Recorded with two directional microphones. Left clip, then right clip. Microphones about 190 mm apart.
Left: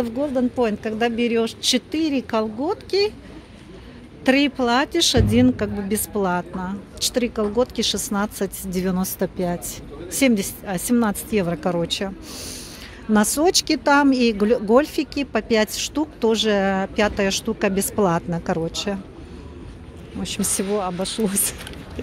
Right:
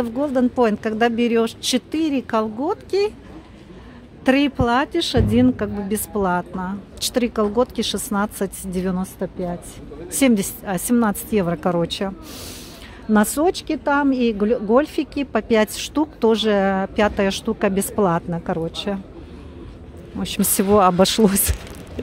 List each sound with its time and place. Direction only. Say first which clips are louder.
0.3 s speech: right 6 dB; 25° right (ahead or behind)
4.2 s speech: right 1 dB; 10° right (ahead or behind)
10.1 s speech: right 1 dB; 15° right (ahead or behind)
13.1 s speech: right 1 dB; 10° right (ahead or behind)
13.5 s speech: left 3 dB; 5° left (ahead or behind)
20.2 s speech: right 3 dB; 20° right (ahead or behind)
20.7 s speech: right 12 dB; 40° right (ahead or behind)